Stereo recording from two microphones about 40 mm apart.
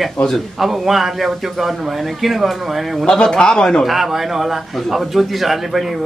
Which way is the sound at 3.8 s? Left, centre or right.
Centre.